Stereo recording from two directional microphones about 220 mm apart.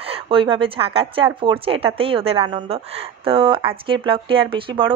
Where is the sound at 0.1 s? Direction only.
25° right (ahead or behind).